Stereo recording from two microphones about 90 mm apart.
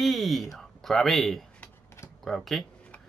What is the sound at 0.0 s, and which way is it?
Speech, centre (ahead or behind).